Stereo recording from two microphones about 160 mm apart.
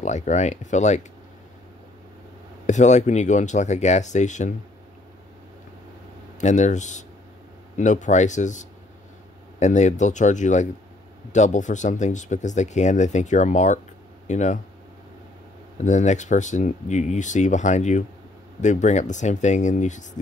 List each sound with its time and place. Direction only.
0.0 s speech: 50° left (ahead or behind)
2.6 s speech: 45° left (ahead or behind)
6.4 s speech: 50° left (ahead or behind)
15.8 s speech: 50° left (ahead or behind)